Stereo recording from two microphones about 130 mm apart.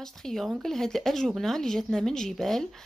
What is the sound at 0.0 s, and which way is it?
A woman's voice, 5° left (ahead or behind).